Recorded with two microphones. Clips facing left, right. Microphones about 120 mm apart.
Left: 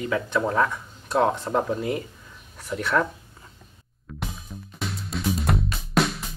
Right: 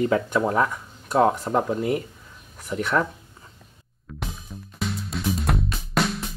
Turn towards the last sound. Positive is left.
turn(degrees=0)  # may be behind; listen again after turning